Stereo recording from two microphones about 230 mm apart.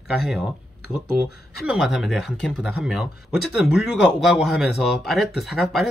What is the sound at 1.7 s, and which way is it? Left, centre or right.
Speech, centre.